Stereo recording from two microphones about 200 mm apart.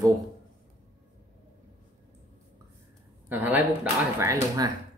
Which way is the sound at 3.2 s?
10° right (ahead or behind).